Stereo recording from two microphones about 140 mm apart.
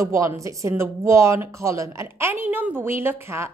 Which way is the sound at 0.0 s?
20° right (ahead or behind).